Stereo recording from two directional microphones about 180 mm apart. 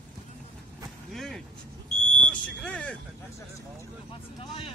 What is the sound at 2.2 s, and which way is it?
Smoke detector, 5° left (ahead or behind).